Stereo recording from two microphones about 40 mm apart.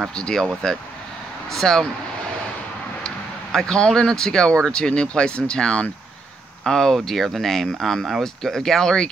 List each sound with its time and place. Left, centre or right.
0.1 s speech: centre
1.5 s speech: centre
3.5 s speech: centre
6.6 s speech: centre